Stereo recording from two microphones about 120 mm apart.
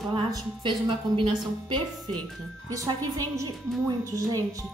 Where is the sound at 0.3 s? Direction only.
40° right (ahead or behind).